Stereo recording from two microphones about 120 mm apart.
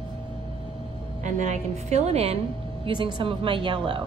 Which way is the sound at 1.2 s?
85° right.